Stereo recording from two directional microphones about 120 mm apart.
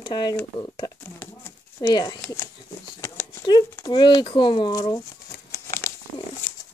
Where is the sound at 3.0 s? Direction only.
20° left (ahead or behind).